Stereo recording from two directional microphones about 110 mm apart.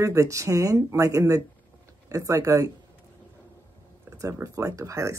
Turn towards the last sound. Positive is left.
turn(degrees=-30)  # may be behind; listen again after turning